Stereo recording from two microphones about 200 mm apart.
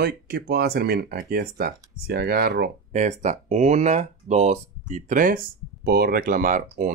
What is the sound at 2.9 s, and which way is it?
Speech, 35° right (ahead or behind).